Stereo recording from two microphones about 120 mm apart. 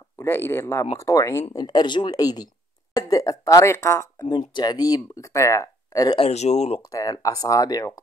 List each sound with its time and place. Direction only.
0.2 s speech: 20° left (ahead or behind)
4.6 s speech: 35° left (ahead or behind)
6.1 s speech: 65° left (ahead or behind)
6.9 s speech: 30° left (ahead or behind)